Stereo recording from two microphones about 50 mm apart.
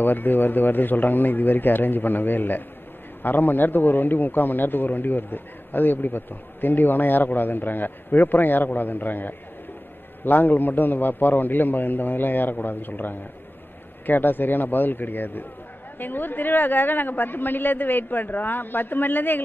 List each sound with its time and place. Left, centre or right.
0.0 s a man's voice: left